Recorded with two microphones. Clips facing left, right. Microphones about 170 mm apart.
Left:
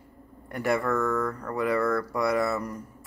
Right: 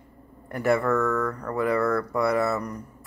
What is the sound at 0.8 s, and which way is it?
Speech, centre (ahead or behind).